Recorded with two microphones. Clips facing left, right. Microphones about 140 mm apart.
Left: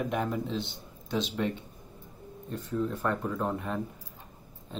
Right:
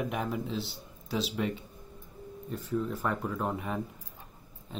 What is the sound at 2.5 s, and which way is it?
Speech, centre (ahead or behind).